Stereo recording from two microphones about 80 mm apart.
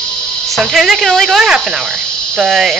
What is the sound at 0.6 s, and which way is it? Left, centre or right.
Speech, centre.